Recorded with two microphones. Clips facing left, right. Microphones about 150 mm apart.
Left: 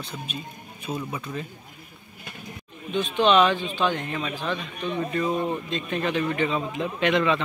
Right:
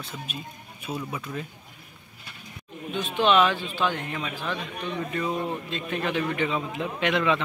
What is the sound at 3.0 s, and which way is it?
A man's voice, 10° right (ahead or behind).